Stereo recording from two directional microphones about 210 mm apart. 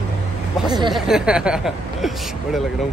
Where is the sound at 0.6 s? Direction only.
20° right (ahead or behind).